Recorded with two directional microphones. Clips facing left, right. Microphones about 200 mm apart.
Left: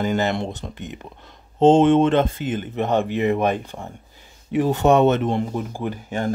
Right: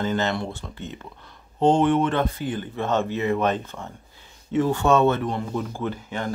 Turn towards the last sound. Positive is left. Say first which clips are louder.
# left 1 dB
turn(degrees=15)  # may be behind; listen again after turning